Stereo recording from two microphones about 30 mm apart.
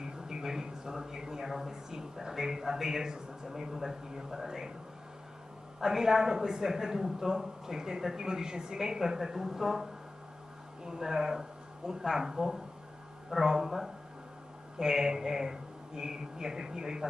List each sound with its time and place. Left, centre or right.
0.0 s a sound: centre
2.3 s speech: centre
5.8 s a man's voice: centre
9.2 s a man's voice: centre